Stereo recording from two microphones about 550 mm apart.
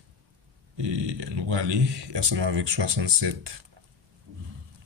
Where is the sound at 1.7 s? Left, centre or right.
Right.